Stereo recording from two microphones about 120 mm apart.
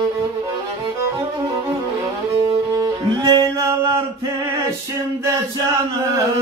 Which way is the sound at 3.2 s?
30° right (ahead or behind).